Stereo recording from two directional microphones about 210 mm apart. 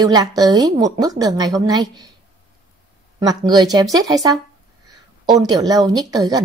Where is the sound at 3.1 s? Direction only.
20° right (ahead or behind).